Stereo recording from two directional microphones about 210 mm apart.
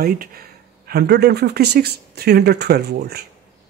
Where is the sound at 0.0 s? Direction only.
45° right (ahead or behind).